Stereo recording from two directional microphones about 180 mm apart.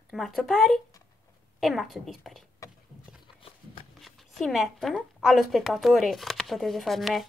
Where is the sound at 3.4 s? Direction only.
30° left (ahead or behind).